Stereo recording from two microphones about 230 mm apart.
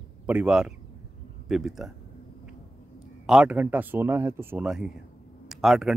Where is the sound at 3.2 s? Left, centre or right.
Centre.